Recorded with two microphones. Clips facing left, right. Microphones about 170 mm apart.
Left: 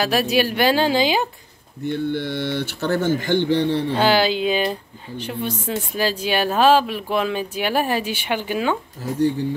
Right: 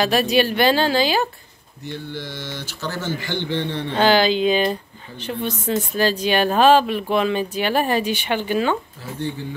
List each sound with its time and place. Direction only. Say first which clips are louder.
0.0 s speech: right 1 dB; 5° left (ahead or behind)
1.9 s speech: left 8 dB; 60° left (ahead or behind); by 3.8 s 40° left (ahead or behind)
3.9 s speech: right 4 dB; 5° left (ahead or behind)